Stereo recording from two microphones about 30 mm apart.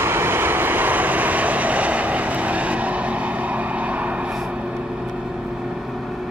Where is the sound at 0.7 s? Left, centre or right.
Right.